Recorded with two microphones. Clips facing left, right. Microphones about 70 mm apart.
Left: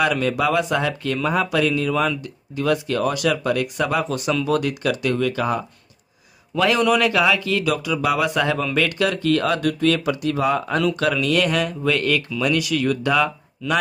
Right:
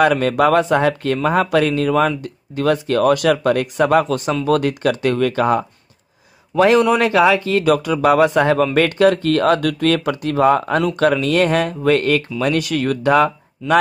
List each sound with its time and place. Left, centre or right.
0.0 s speech: right
4.5 s speech: right
6.5 s speech: right